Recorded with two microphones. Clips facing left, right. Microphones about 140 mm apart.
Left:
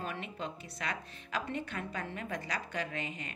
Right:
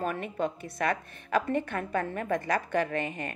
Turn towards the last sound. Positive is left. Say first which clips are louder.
# right 8 dB
turn(degrees=-55)  # may be behind; listen again after turning